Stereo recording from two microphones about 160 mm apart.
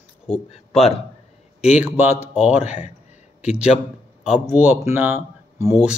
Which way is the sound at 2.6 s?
45° left (ahead or behind).